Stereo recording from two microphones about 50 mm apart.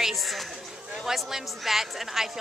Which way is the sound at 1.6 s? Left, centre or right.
Centre.